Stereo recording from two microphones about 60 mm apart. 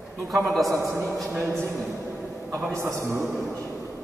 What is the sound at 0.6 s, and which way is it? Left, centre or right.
Speech, right.